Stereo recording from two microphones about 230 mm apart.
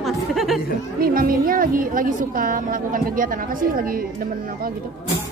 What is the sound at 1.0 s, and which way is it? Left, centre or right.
A woman's voice, right.